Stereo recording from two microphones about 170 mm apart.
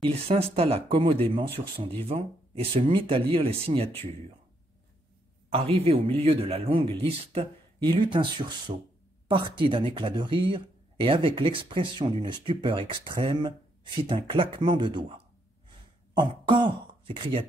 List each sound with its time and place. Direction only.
0.0 s speech: 35° right (ahead or behind)
5.5 s speech: 35° right (ahead or behind)
16.2 s speech: 25° right (ahead or behind)